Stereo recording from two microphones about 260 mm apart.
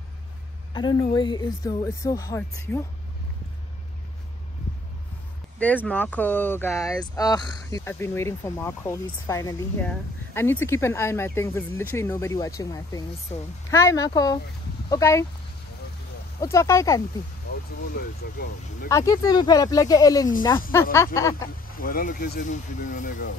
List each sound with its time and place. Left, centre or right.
0.7 s speech: centre
5.9 s speech: centre
16.3 s speech: centre
17.9 s speech: left
18.9 s speech: centre
21.7 s speech: left